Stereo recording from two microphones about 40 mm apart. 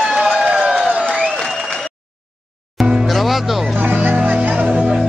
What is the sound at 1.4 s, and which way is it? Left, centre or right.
Applause, centre.